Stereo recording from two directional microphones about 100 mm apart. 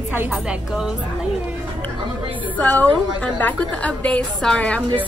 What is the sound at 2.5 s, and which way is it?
A woman's voice, 15° left (ahead or behind).